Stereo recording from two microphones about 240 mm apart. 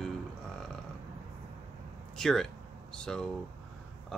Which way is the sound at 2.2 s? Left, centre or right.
Centre.